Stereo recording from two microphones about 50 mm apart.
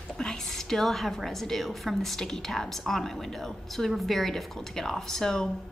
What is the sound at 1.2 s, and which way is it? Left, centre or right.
A woman's voice, centre.